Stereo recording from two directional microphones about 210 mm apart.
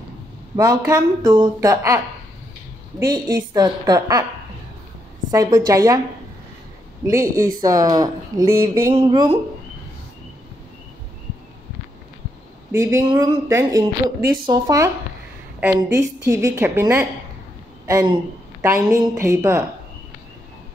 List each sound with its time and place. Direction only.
0.6 s speech: 15° right (ahead or behind)
3.0 s speech: 15° right (ahead or behind)
5.3 s speech: 15° right (ahead or behind)
7.1 s speech: 15° right (ahead or behind)
12.7 s speech: 15° right (ahead or behind)